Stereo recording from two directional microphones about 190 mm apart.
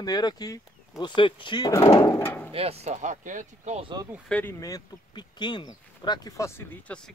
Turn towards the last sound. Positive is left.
turn(degrees=10)  # may be behind; listen again after turning